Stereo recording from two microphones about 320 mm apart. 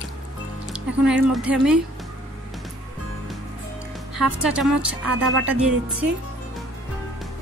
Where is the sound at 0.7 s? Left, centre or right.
Centre.